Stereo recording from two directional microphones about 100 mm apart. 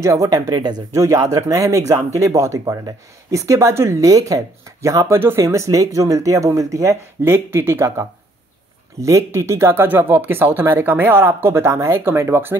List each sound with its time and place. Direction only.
0.0 s speech: 30° right (ahead or behind)
0.6 s speech: 45° right (ahead or behind)
0.9 s speech: 30° right (ahead or behind)